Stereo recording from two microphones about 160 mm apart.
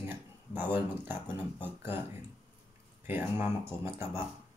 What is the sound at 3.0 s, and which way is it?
Speech, 15° right (ahead or behind).